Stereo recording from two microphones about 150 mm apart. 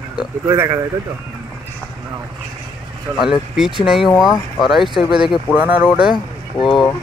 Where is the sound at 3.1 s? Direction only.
20° right (ahead or behind).